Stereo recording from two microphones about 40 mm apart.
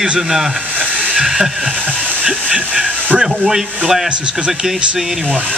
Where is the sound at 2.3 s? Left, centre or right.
Right.